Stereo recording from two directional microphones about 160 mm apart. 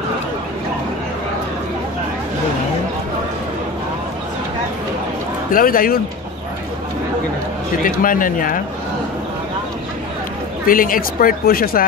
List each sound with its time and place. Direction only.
5.5 s a woman's voice: 60° left (ahead or behind)
7.8 s a woman's voice: 60° left (ahead or behind)
10.7 s a woman's voice: 60° left (ahead or behind)